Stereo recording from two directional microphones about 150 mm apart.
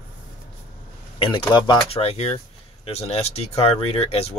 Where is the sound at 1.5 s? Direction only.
30° left (ahead or behind).